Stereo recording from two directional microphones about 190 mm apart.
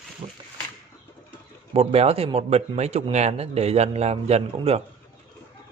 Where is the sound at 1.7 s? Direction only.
30° right (ahead or behind).